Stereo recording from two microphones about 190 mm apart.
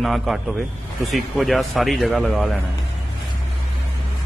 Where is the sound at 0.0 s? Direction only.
Centre (ahead or behind).